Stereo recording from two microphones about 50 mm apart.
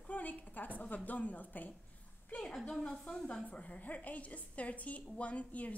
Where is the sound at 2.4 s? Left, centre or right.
Centre.